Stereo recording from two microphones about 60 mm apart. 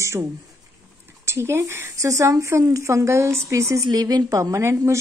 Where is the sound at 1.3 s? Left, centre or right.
Right.